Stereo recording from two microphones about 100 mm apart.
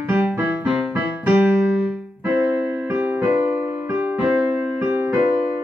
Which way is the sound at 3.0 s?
20° right (ahead or behind).